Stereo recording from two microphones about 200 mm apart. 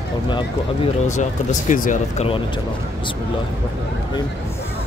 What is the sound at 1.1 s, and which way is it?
Speech, 40° left (ahead or behind).